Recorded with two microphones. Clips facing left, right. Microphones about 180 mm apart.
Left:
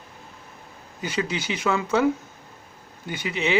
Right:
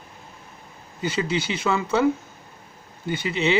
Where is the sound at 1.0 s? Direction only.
15° left (ahead or behind).